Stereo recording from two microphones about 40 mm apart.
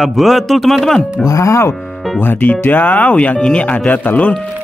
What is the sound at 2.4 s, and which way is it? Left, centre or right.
Speech, left.